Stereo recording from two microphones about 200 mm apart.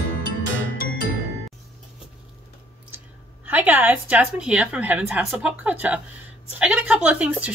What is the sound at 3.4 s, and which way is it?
Speech, 10° right (ahead or behind).